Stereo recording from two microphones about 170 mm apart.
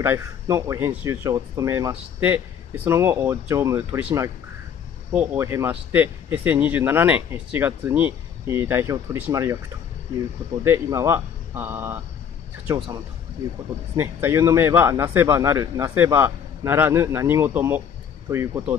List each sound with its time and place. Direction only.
0.0 s speech: 15° right (ahead or behind)
10.6 s speech: 15° right (ahead or behind)
13.9 s speech: 15° right (ahead or behind)